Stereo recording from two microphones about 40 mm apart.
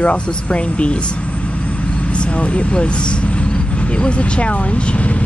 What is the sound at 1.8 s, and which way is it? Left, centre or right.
Vehicle, left.